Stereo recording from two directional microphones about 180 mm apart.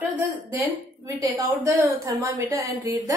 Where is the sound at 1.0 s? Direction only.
15° right (ahead or behind).